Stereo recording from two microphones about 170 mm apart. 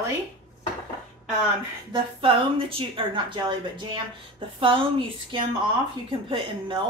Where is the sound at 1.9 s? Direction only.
30° right (ahead or behind).